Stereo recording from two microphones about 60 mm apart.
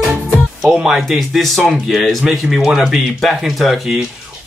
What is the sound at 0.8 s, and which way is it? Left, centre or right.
Speech, centre.